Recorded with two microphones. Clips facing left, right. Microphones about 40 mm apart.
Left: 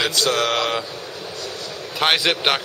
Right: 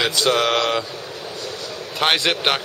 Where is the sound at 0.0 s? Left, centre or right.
Centre.